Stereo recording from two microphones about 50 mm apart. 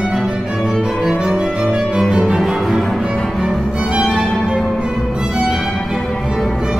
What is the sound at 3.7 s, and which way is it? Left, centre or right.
Music, centre.